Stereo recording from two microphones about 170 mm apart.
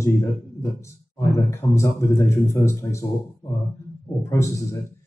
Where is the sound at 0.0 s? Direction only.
15° left (ahead or behind).